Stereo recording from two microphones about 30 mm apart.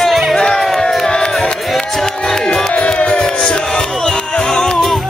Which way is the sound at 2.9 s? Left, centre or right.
Left.